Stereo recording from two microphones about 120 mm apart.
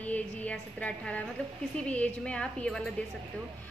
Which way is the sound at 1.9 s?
10° left (ahead or behind).